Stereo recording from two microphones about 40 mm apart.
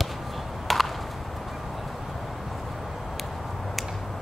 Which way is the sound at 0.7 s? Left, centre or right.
Centre.